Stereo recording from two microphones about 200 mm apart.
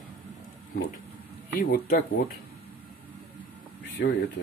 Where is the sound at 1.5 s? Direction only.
45° left (ahead or behind).